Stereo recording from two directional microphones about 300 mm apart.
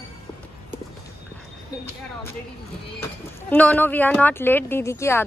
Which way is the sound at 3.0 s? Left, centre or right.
Centre.